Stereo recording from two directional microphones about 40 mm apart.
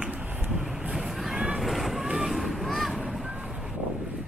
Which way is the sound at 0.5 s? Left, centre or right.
Centre.